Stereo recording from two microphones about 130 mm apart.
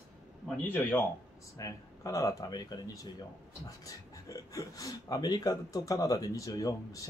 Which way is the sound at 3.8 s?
25° left (ahead or behind).